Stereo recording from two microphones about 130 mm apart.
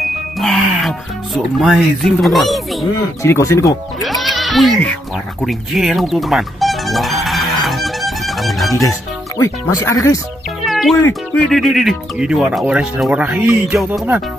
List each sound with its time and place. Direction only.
0.4 s speech: centre (ahead or behind)
3.2 s speech: 20° left (ahead or behind)
4.0 s bleat: centre (ahead or behind)
9.7 s speech: 30° left (ahead or behind)
10.6 s music: centre (ahead or behind)
11.0 s speech: 15° left (ahead or behind); by 14.0 s 5° right (ahead or behind)